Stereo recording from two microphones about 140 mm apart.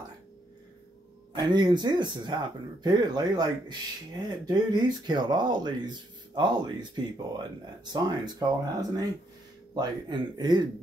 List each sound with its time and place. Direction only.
1.3 s speech: 30° right (ahead or behind)